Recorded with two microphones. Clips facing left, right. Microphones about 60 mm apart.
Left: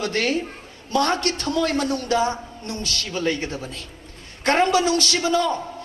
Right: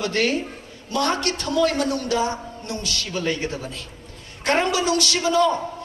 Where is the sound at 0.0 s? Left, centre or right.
Left.